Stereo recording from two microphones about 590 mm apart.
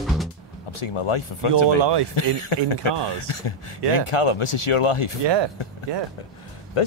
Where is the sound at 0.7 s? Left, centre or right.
Left.